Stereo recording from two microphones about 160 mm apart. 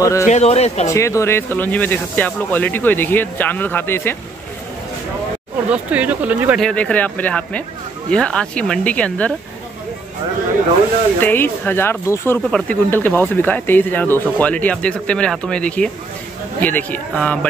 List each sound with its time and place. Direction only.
0.0 s speech: 20° left (ahead or behind)
0.3 s speech: 40° left (ahead or behind)
0.8 s speech: 20° left (ahead or behind)
5.7 s speech: 10° right (ahead or behind)
6.6 s speech: 5° left (ahead or behind)
11.1 s speech: 10° left (ahead or behind)